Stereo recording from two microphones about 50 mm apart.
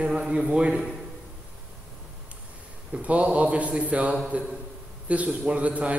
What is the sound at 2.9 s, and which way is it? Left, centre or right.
A man's voice, right.